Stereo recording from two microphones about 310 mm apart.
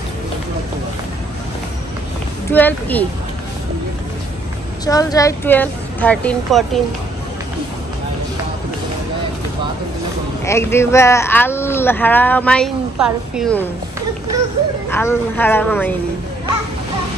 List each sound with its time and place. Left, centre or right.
2.5 s a woman's voice: centre
4.8 s a woman's voice: centre
10.4 s speech: centre
14.9 s speech: centre